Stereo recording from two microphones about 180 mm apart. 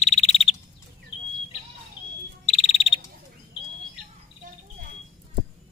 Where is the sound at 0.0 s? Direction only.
40° left (ahead or behind).